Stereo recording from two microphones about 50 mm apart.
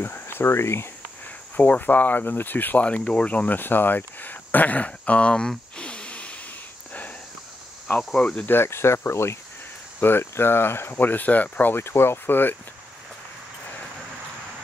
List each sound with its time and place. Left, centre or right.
0.0 s speech: left
1.6 s speech: left
2.8 s speech: centre
3.3 s speech: left
3.5 s a sound: left
8.2 s speech: left
8.5 s speech: left
9.9 s speech: left
11.7 s speech: left